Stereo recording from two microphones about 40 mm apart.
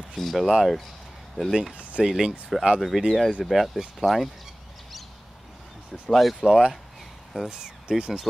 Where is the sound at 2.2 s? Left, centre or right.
Centre.